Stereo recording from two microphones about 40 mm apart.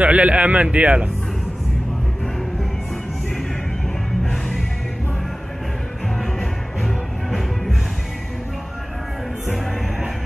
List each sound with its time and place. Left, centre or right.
0.0 s a man's voice: right
4.2 s music: centre
6.8 s music: centre